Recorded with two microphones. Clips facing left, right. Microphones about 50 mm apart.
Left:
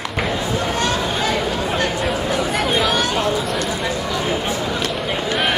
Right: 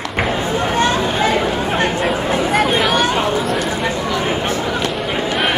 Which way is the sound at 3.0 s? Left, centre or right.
Right.